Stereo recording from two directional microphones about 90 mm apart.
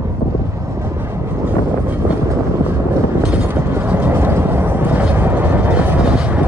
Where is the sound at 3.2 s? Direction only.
15° right (ahead or behind).